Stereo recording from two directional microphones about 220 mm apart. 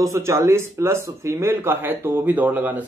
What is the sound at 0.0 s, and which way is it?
Speech, 15° right (ahead or behind).